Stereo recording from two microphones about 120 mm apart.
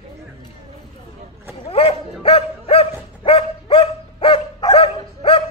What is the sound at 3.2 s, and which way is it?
Dog, 50° left (ahead or behind).